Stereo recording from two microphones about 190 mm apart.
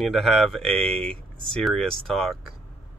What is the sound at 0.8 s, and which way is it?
Speech, 30° right (ahead or behind).